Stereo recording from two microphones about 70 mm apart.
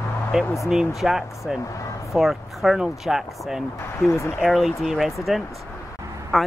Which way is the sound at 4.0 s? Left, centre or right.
Left.